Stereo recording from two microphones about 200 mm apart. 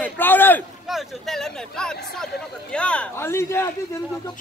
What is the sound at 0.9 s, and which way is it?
A man's voice, centre (ahead or behind).